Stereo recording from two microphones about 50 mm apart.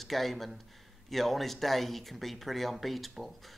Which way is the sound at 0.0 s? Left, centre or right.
Centre.